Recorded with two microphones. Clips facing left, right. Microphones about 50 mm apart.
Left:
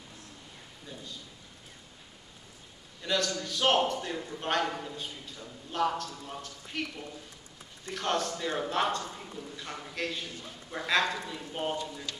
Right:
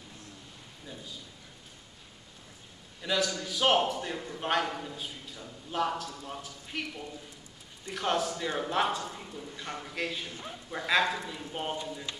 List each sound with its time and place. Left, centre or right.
3.0 s a man's voice: centre
10.3 s a man's voice: right
10.7 s a man's voice: centre